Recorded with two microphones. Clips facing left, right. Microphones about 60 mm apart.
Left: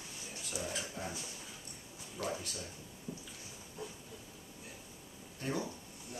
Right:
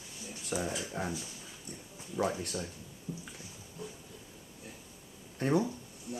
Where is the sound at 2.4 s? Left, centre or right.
Right.